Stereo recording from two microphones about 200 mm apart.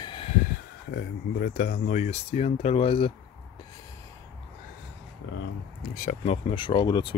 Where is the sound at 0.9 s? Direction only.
50° left (ahead or behind); by 3.1 s 25° left (ahead or behind).